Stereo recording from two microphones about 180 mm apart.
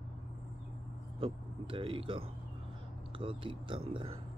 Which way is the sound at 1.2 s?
30° right (ahead or behind).